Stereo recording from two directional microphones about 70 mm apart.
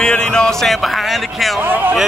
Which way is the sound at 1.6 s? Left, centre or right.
Right.